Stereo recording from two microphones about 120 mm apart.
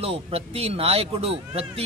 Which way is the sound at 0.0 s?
55° right (ahead or behind).